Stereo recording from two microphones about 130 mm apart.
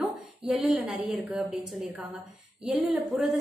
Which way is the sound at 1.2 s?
5° right (ahead or behind).